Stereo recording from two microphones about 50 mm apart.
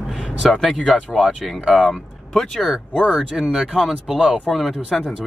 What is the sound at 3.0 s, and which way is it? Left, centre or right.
Speech, centre.